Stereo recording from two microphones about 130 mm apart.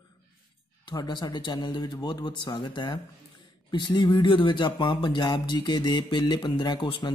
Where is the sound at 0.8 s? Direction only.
35° left (ahead or behind).